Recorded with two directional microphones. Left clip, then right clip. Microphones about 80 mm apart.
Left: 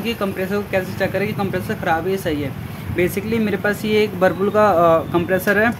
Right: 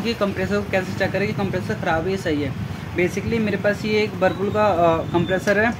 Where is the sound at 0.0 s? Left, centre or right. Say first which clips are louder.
Even; centre.